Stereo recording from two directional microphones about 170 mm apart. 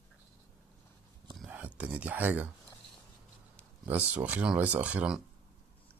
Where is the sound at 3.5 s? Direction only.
10° right (ahead or behind).